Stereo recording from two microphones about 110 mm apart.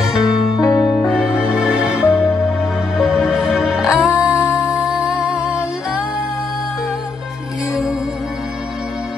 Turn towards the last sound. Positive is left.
turn(degrees=-5)  # may be behind; listen again after turning